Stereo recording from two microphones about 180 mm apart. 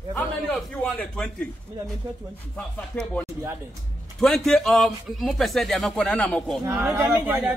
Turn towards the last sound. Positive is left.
turn(degrees=-10)  # may be behind; listen again after turning